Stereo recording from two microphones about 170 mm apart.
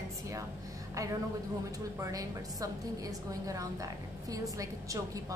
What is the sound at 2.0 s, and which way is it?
A woman's voice, 20° right (ahead or behind).